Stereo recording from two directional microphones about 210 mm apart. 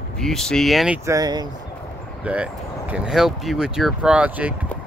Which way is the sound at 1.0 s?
15° right (ahead or behind).